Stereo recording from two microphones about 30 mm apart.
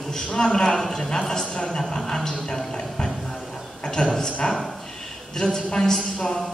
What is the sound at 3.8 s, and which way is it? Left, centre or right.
A man's voice, left.